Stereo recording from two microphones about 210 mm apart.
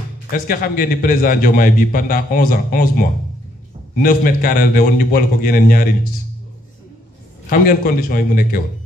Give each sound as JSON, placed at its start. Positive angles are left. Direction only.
{"t": 0.3, "sound": "a man's voice", "side_deg": 45}
{"t": 7.4, "sound": "a man's voice", "side_deg": 45}